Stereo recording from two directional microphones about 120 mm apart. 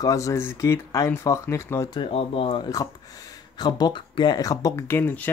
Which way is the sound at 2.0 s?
50° left (ahead or behind).